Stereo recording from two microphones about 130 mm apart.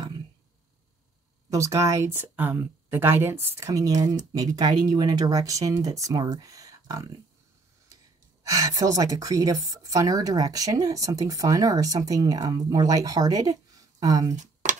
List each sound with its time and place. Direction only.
1.5 s a woman's voice: 25° right (ahead or behind)
8.5 s a woman's voice: 25° right (ahead or behind)
14.3 s a sound: 70° right (ahead or behind)